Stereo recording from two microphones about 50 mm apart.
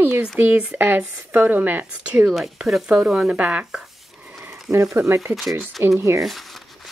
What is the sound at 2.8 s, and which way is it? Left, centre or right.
Speech, centre.